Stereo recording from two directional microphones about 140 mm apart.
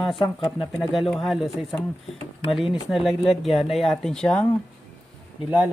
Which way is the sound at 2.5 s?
Centre (ahead or behind).